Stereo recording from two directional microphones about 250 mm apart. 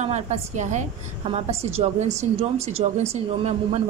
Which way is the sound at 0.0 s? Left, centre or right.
Right.